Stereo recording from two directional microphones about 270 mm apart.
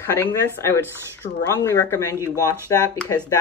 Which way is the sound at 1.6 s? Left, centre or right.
Centre.